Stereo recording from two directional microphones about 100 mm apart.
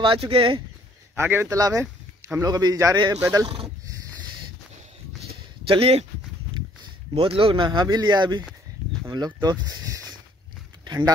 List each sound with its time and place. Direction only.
0.0 s speech: 70° right (ahead or behind)
1.1 s speech: 25° right (ahead or behind)
3.8 s a sound: 45° right (ahead or behind)
5.7 s speech: 85° right
7.2 s speech: 65° right (ahead or behind); by 10.1 s 35° right (ahead or behind)